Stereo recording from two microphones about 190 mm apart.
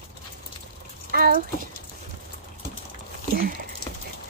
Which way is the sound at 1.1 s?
55° right (ahead or behind).